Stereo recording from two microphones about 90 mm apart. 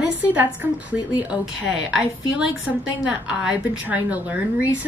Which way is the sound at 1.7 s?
10° right (ahead or behind).